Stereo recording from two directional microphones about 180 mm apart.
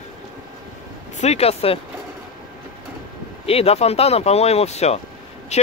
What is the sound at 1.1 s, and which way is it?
Speech, 35° left (ahead or behind).